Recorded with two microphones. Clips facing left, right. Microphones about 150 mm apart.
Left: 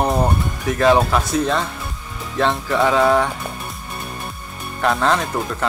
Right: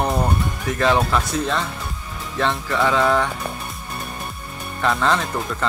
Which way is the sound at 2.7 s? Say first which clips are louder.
Left 3 dB; 15° left (ahead or behind).